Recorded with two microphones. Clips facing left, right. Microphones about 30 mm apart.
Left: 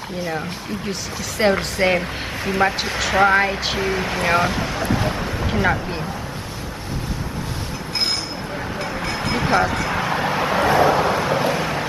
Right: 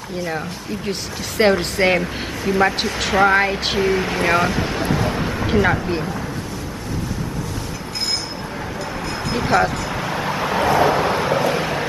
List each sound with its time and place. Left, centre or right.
1.4 s speech: centre
9.3 s a sound: left
9.8 s vehicle: centre